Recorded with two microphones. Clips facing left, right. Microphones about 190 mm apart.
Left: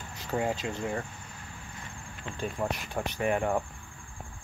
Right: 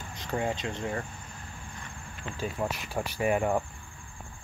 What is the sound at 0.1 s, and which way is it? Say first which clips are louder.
Speech: left 1 dB; 5° left (ahead or behind).